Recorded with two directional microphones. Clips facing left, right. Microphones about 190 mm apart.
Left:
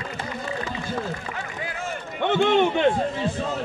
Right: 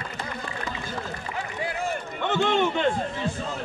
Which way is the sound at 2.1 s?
55° left (ahead or behind).